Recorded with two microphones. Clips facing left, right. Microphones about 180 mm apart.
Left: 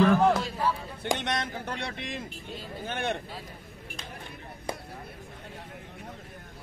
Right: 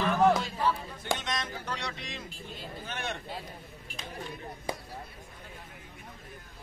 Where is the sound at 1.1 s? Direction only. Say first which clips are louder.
Left 3 dB; 60° left (ahead or behind).